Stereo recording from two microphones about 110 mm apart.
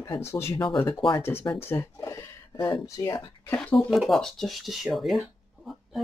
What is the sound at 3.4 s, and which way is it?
Speech, 10° left (ahead or behind).